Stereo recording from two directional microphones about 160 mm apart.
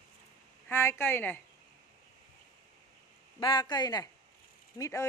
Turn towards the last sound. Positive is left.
turn(degrees=25)  # may be behind; listen again after turning